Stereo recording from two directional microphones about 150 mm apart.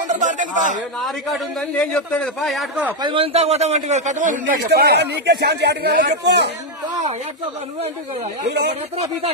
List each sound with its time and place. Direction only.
0.1 s a sound: 55° right (ahead or behind)
1.7 s a man's voice: 10° left (ahead or behind)
3.0 s a man's voice: 35° right (ahead or behind); by 6.0 s 90° right
8.5 s speech: 90° right
8.9 s speech: 40° right (ahead or behind)